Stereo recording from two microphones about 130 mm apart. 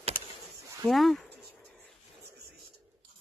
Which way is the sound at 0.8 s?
Centre (ahead or behind).